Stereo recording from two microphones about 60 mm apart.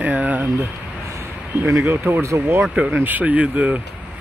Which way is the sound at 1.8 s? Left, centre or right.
Right.